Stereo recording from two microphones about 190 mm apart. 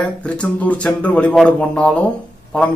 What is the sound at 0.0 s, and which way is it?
Speech, 5° left (ahead or behind).